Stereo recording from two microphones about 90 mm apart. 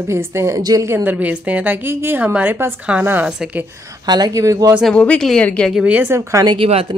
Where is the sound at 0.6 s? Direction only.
45° right (ahead or behind).